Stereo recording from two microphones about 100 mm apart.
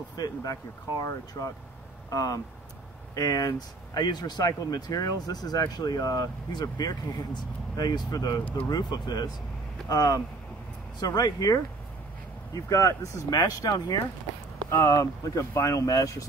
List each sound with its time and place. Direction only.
0.2 s speech: 40° left (ahead or behind)